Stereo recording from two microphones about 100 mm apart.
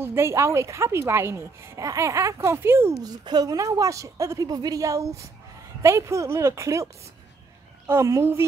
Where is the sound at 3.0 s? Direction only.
45° right (ahead or behind).